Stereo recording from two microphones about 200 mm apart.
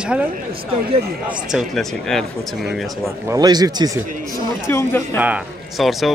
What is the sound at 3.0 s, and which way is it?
Speech, 15° right (ahead or behind).